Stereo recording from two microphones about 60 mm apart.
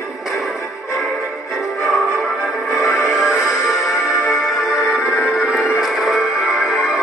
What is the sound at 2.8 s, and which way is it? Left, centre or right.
Music, left.